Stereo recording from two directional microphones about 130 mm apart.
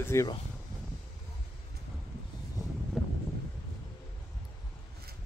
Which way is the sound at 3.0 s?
Centre (ahead or behind).